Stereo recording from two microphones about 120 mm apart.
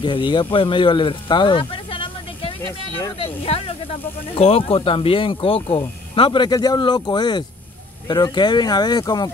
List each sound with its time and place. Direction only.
0.0 s speech: 40° left (ahead or behind)